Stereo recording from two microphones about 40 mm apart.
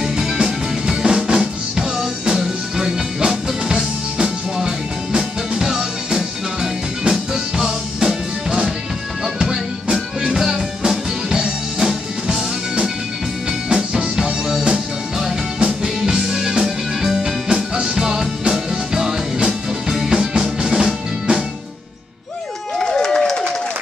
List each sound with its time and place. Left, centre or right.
0.0 s music: centre
13.7 s music: centre
17.9 s music: centre
22.8 s a sound: centre